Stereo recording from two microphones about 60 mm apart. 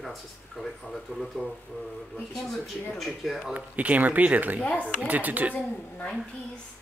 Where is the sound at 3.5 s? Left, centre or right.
Right.